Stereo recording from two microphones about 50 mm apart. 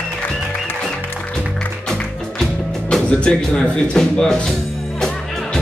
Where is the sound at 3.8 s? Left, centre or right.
Centre.